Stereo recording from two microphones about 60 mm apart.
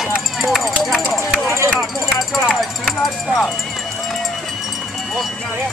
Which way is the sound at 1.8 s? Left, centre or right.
Centre.